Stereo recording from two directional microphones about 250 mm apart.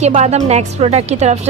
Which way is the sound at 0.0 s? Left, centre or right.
Right.